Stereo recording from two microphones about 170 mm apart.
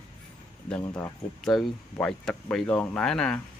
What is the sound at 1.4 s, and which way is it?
Speech, 5° left (ahead or behind).